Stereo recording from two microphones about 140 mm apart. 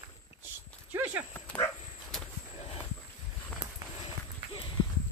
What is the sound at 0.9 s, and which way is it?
Speech, 15° right (ahead or behind).